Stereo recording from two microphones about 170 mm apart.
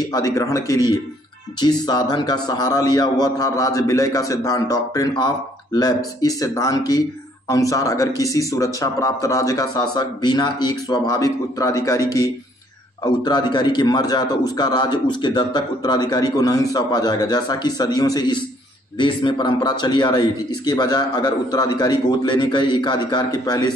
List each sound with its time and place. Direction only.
0.0 s a man's voice: 20° left (ahead or behind)